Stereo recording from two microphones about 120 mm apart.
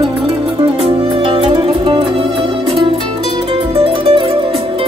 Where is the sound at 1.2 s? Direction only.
45° right (ahead or behind).